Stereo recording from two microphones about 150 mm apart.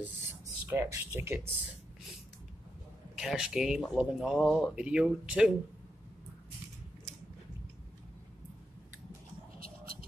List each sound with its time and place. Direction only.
0.0 s speech: 15° right (ahead or behind)
3.2 s speech: 5° right (ahead or behind)